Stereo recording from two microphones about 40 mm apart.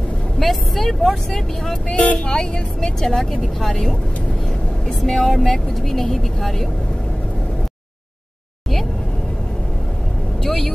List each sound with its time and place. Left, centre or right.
0.4 s speech: centre
2.0 s speech: left
2.3 s speech: centre
4.8 s speech: centre
10.4 s vehicle: centre